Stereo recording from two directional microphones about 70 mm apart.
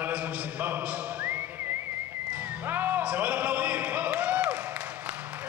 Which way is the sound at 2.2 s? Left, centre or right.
Right.